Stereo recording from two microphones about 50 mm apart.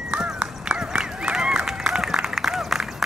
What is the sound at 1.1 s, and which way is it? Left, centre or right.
Run, centre.